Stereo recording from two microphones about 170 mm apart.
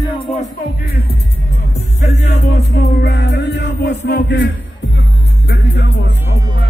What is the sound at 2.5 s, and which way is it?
Music, 80° left.